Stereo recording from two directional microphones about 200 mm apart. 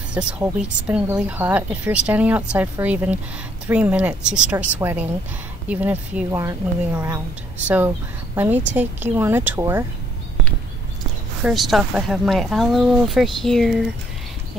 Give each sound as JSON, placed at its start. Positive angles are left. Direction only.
{"t": 0.1, "sound": "speech", "side_deg": -5}
{"t": 11.4, "sound": "speech", "side_deg": 0}